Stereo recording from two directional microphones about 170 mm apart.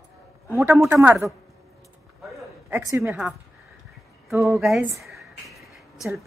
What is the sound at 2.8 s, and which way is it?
Speech, 15° right (ahead or behind).